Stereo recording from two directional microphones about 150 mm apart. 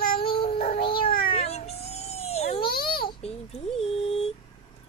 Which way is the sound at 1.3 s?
45° left (ahead or behind).